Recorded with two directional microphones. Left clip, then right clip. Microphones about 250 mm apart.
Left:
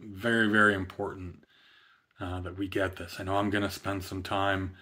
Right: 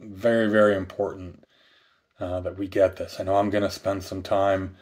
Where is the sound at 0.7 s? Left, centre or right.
Left.